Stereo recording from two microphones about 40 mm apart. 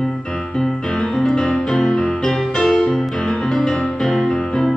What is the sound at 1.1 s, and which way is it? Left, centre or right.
Music, centre.